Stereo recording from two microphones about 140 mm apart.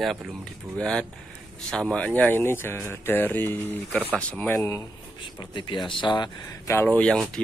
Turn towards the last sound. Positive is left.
turn(degrees=5)  # may be behind; listen again after turning